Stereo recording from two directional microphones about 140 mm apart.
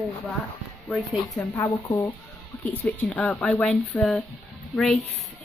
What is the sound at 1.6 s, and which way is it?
Speech, 15° left (ahead or behind).